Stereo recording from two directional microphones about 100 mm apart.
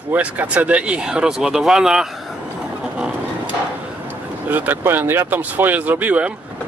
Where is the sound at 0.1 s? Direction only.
15° right (ahead or behind).